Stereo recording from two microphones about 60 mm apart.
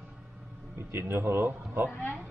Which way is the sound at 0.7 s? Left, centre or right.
Right.